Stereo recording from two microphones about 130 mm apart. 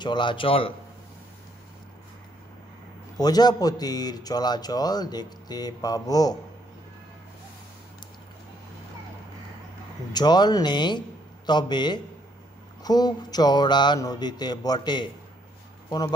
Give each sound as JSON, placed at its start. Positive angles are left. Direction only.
{"t": 0.0, "sound": "a man's voice", "side_deg": 35}
{"t": 3.2, "sound": "a man's voice", "side_deg": 30}
{"t": 10.1, "sound": "a man's voice", "side_deg": 30}